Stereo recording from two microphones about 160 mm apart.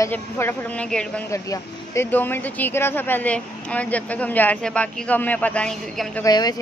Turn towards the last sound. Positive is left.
turn(degrees=25)  # may be behind; listen again after turning